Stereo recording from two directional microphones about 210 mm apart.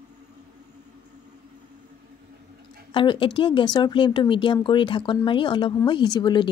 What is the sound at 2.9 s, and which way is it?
Speech, 25° left (ahead or behind).